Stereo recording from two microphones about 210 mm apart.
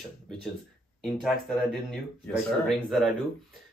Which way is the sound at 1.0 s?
Centre (ahead or behind).